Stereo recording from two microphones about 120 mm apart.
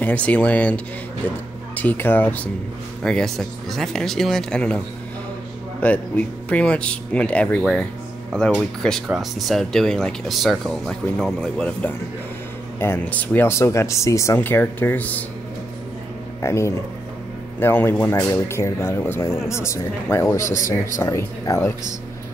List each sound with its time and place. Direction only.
0.0 s speech: 10° left (ahead or behind)
1.8 s speech: 15° left (ahead or behind)
12.7 s speech: 20° left (ahead or behind)
16.3 s speech: 25° left (ahead or behind)